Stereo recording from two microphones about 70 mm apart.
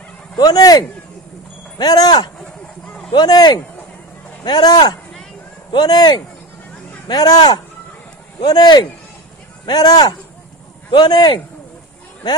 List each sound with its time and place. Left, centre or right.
0.4 s speech: left
4.5 s speech: left
7.1 s speech: left